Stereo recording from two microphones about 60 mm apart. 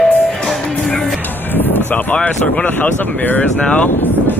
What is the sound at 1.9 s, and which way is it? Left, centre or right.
Speech, left.